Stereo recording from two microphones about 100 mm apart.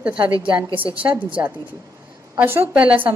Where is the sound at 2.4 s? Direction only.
20° right (ahead or behind).